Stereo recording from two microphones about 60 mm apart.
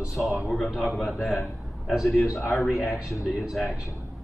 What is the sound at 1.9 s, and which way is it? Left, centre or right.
Speech, centre.